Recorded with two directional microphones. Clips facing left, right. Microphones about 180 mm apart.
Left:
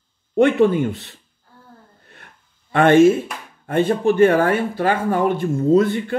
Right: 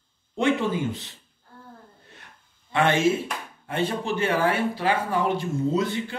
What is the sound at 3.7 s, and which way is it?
Speech, 50° left (ahead or behind).